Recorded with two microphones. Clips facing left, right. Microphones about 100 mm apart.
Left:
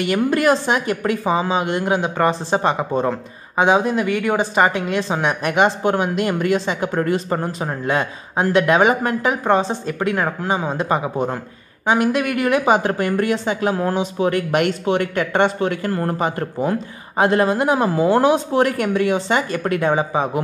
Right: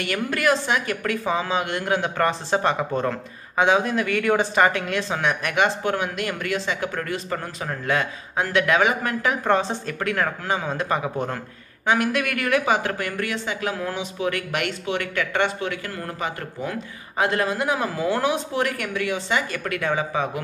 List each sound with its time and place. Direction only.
0.0 s a woman's voice: 25° left (ahead or behind)